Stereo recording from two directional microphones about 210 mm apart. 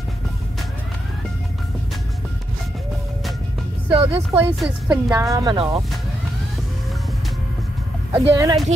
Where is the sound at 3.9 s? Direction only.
25° right (ahead or behind).